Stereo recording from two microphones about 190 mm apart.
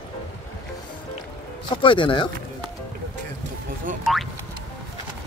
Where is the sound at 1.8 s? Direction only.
25° left (ahead or behind).